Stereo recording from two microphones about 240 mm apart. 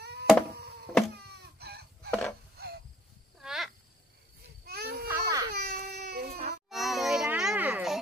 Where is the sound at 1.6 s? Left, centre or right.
Right.